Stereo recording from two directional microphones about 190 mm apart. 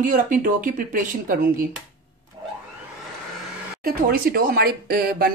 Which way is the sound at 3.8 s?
50° right (ahead or behind).